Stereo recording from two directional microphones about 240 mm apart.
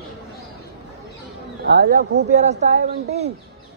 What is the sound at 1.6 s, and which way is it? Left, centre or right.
Speech, right.